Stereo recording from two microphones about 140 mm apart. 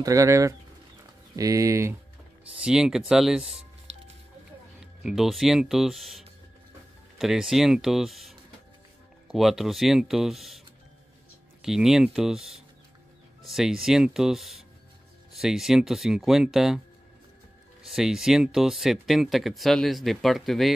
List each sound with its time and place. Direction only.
0.0 s speech: 25° right (ahead or behind)
2.5 s speech: 5° right (ahead or behind)
4.7 s speech: 5° right (ahead or behind)
11.6 s speech: 5° right (ahead or behind)
17.8 s speech: 5° right (ahead or behind)